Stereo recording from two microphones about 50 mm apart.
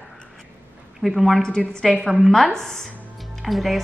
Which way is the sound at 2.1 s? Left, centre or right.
Centre.